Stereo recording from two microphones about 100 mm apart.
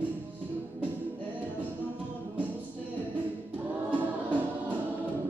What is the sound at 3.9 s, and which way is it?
Music, 15° right (ahead or behind).